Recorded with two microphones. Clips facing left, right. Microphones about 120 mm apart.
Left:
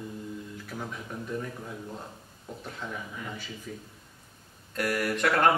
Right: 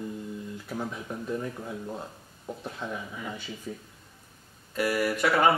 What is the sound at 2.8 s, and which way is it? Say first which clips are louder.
A man's voice: right 3 dB; 20° right (ahead or behind).